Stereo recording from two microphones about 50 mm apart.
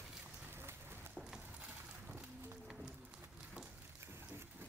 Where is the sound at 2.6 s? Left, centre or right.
Centre.